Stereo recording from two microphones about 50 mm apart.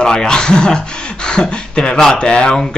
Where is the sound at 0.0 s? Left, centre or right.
Centre.